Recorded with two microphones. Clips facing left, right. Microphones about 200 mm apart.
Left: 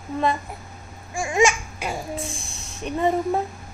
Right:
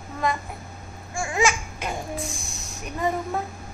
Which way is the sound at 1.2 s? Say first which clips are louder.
Left 4 dB; 20° left (ahead or behind).